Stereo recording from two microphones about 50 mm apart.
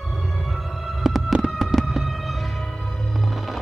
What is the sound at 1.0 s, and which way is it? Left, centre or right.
Fireworks, centre.